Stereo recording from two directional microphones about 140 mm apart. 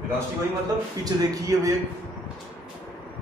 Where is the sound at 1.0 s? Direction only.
25° right (ahead or behind).